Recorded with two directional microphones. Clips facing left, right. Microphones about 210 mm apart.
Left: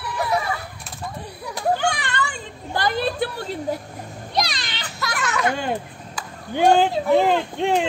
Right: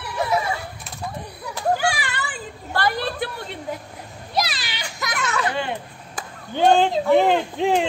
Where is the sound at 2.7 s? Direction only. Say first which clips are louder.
Left 1 dB; 20° left (ahead or behind).